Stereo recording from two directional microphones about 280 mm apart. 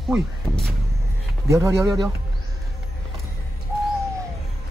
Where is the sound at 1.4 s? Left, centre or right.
Centre.